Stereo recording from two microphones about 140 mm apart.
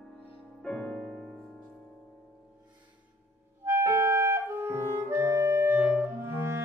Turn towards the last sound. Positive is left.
turn(degrees=-15)  # may be behind; listen again after turning